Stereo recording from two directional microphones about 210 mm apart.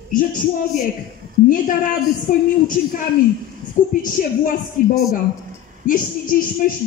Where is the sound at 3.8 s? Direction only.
40° left (ahead or behind).